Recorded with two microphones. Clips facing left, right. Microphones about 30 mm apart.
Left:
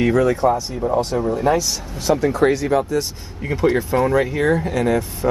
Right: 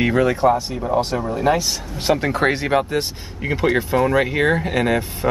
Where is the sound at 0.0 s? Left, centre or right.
Right.